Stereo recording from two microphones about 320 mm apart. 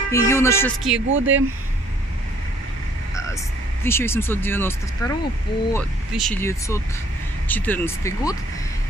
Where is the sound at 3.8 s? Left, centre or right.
Centre.